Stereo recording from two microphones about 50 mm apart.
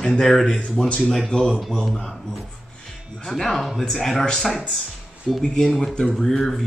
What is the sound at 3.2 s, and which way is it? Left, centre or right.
Speech, centre.